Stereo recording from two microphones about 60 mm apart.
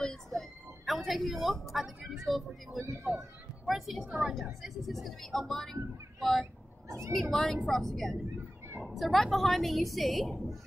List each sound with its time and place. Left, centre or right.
0.0 s a sound: centre
2.8 s speech: right
3.1 s a woman's voice: centre